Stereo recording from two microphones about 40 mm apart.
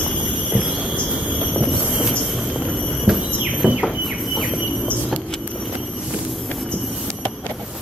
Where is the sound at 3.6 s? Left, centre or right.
Right.